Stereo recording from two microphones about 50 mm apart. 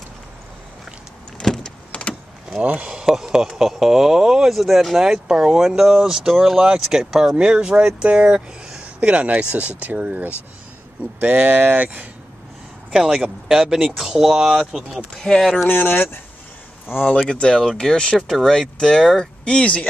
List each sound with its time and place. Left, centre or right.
1.4 s vehicle: centre
1.9 s vehicle: left
2.6 s speech: right; by 7.3 s centre
7.3 s speech: right
12.9 s speech: centre
15.2 s speech: centre
15.7 s speech: left
17.3 s speech: centre